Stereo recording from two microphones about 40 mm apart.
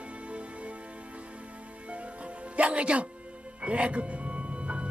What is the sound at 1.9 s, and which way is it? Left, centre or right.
Music, right.